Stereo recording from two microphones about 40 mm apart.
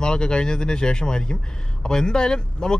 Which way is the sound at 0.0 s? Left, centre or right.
Left.